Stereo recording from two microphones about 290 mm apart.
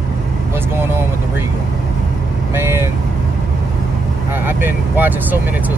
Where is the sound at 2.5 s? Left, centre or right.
Centre.